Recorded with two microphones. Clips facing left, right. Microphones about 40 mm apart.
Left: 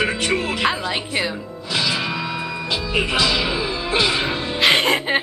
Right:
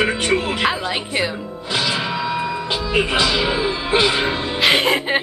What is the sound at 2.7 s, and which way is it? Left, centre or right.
Speech, right.